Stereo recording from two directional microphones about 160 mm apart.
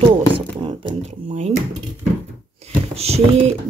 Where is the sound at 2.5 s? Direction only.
40° right (ahead or behind).